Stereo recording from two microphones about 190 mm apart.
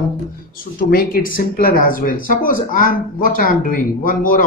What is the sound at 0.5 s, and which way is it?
Speech, 50° left (ahead or behind).